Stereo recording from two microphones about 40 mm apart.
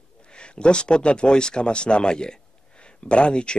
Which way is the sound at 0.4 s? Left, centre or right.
Left.